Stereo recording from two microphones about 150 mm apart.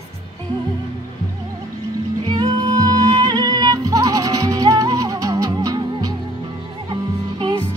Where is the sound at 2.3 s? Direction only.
30° right (ahead or behind).